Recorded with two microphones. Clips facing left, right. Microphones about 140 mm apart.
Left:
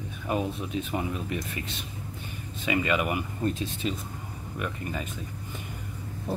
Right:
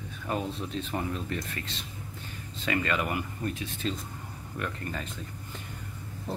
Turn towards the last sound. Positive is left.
turn(degrees=15)  # may be behind; listen again after turning